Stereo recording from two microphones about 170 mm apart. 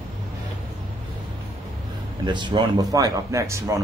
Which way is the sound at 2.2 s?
25° right (ahead or behind).